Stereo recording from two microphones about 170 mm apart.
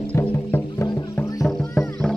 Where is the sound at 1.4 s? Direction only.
Centre (ahead or behind).